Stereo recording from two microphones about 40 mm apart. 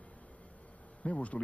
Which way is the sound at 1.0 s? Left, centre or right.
Left.